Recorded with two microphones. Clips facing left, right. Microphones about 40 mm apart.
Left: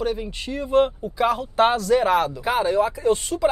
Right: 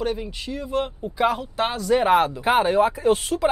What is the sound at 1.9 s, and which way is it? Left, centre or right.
Speech, right.